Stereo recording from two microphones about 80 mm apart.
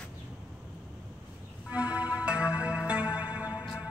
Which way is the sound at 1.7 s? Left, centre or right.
Centre.